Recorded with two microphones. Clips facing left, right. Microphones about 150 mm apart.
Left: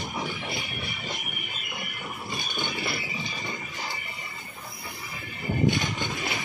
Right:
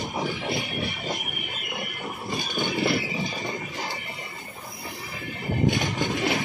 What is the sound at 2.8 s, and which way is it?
Vehicle, 75° right (ahead or behind).